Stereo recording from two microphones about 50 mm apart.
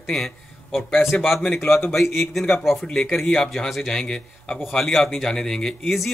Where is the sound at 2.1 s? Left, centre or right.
Centre.